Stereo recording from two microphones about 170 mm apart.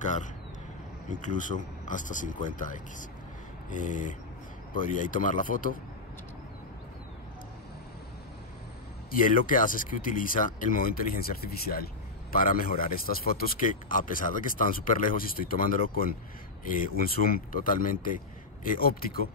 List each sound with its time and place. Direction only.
0.0 s a sound: 45° left (ahead or behind)
1.2 s speech: 50° left (ahead or behind)
9.2 s speech: 55° left (ahead or behind)